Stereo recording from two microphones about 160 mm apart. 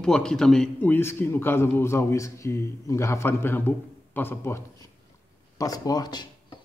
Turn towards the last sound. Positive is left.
turn(degrees=25)  # may be behind; listen again after turning